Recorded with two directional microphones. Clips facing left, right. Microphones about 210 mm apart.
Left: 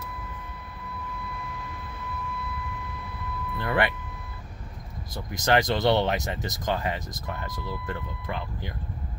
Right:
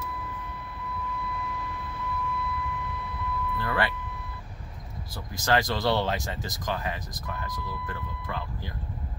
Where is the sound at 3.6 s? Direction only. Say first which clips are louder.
Left 4 dB; 20° left (ahead or behind).